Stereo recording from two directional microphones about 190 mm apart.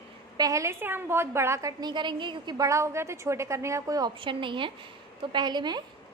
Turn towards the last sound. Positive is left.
turn(degrees=-20)  # may be behind; listen again after turning